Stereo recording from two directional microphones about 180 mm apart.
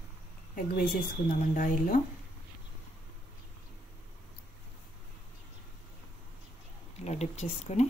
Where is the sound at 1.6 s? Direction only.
50° left (ahead or behind).